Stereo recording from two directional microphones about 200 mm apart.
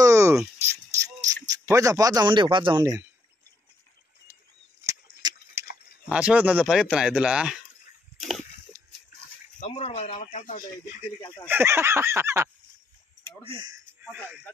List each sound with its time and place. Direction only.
0.0 s a sound: 15° right (ahead or behind)
1.7 s speech: 15° right (ahead or behind)
4.8 s tick-tock: 15° right (ahead or behind)
6.0 s speech: 5° right (ahead or behind)
8.2 s a sound: centre (ahead or behind)
9.6 s speech: 30° left (ahead or behind)
11.1 s speech: 20° left (ahead or behind)
11.4 s speech: 10° right (ahead or behind)
13.4 s speech: 25° right (ahead or behind)
14.0 s speech: 5° right (ahead or behind)